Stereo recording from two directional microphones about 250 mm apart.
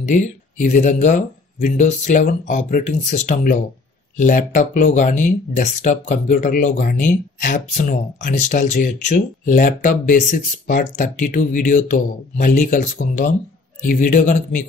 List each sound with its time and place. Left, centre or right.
0.0 s speech: left